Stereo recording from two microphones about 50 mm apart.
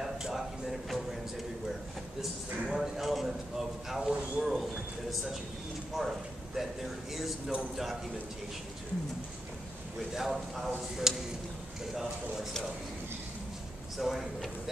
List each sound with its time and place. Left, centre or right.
0.0 s a sound: centre
2.6 s a man's voice: centre
4.1 s a man's voice: right
4.4 s a man's voice: centre
10.1 s a man's voice: centre
13.9 s a man's voice: centre